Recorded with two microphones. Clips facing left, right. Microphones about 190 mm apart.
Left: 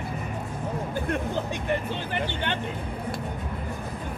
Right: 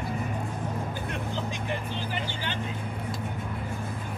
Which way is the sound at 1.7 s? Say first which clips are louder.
Left 4 dB; 60° left (ahead or behind).